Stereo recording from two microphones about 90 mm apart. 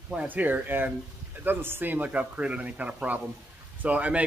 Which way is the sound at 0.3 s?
20° right (ahead or behind).